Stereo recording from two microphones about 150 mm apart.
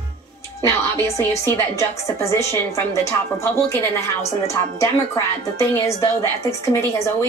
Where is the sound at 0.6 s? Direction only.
20° left (ahead or behind).